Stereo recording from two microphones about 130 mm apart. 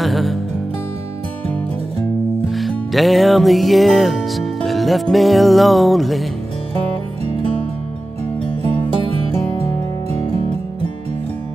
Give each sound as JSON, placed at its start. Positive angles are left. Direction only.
{"t": 0.0, "sound": "music", "side_deg": 0}
{"t": 2.5, "sound": "music", "side_deg": 0}